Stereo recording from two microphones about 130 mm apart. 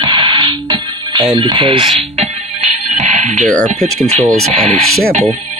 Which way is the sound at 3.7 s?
55° right (ahead or behind).